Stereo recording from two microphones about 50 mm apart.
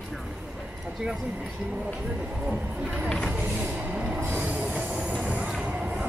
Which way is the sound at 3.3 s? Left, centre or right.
Right.